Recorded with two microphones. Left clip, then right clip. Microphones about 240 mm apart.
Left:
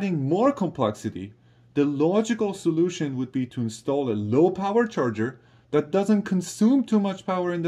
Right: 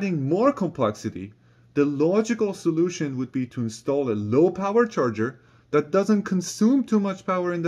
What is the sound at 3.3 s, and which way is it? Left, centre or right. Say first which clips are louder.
Speech: even; centre.